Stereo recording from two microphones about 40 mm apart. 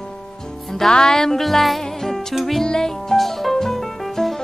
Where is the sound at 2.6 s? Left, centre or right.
Centre.